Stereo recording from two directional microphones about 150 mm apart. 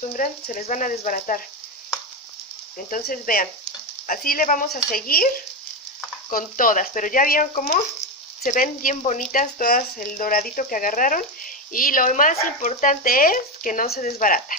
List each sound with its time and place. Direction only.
0.1 s speech: 60° left (ahead or behind)
2.9 s speech: 70° left (ahead or behind)
6.3 s speech: 65° left (ahead or behind)
13.8 s speech: 50° left (ahead or behind)